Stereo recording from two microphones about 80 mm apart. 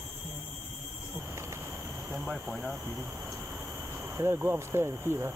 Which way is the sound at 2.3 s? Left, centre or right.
Centre.